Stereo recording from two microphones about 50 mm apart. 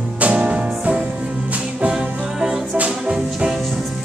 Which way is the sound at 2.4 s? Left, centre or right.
Centre.